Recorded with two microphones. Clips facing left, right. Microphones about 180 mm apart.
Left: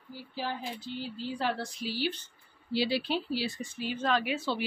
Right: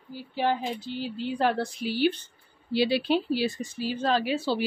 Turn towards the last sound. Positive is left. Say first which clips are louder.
# right 5 dB
turn(degrees=-30)  # may be behind; listen again after turning